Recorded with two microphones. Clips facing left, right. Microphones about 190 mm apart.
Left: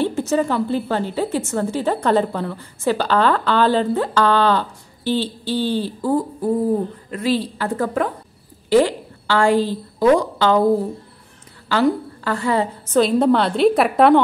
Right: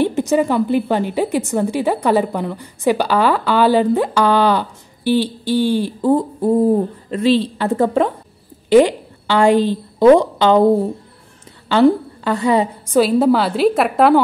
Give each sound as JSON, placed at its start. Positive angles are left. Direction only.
{"t": 0.0, "sound": "a woman's voice", "side_deg": -15}
{"t": 11.7, "sound": "a woman's voice", "side_deg": -20}